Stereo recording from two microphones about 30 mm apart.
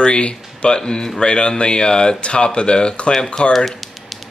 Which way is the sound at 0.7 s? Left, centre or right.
Left.